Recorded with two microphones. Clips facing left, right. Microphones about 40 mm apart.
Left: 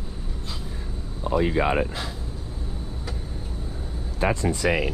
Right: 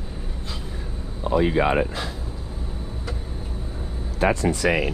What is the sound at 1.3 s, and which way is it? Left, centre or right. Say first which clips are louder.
Speech: right 2 dB; right.